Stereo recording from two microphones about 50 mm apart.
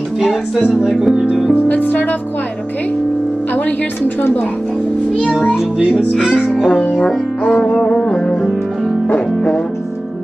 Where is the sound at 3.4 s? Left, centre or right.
Left.